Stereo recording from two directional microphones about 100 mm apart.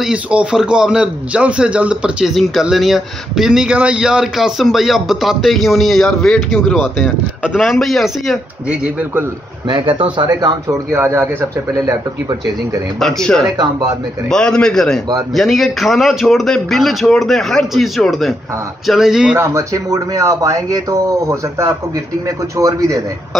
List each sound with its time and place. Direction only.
0.0 s a man's voice: 10° right (ahead or behind)
8.6 s speech: 10° right (ahead or behind)
9.7 s speech: 55° right (ahead or behind)
10.9 s speech: 25° right (ahead or behind)
13.0 s a man's voice: 5° left (ahead or behind)
19.3 s a man's voice: 30° right (ahead or behind)